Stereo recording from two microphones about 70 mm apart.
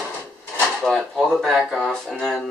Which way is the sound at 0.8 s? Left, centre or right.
Centre.